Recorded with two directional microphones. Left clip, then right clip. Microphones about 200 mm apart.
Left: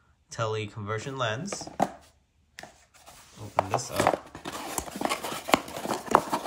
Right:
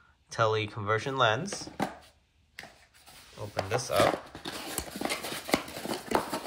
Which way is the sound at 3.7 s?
15° left (ahead or behind).